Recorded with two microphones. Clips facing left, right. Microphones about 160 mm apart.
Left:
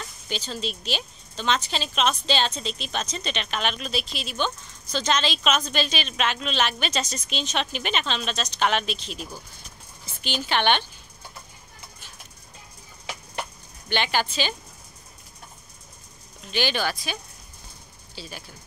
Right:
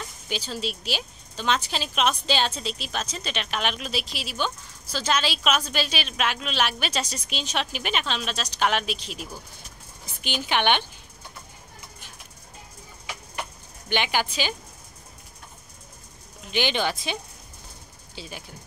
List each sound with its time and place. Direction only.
0.0 s a woman's voice: 10° right (ahead or behind)
13.8 s a woman's voice: 15° right (ahead or behind)
16.4 s speech: 15° right (ahead or behind)